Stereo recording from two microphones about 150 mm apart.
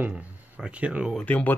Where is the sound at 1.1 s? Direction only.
10° left (ahead or behind).